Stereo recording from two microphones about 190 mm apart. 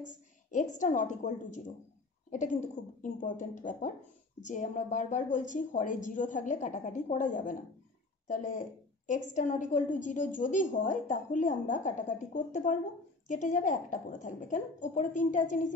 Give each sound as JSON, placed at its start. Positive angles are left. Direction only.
{"t": 0.0, "sound": "a woman's voice", "side_deg": 40}
{"t": 3.0, "sound": "a woman's voice", "side_deg": 40}